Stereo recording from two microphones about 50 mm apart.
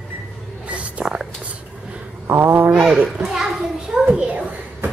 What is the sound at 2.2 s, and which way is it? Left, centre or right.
Mantra, right.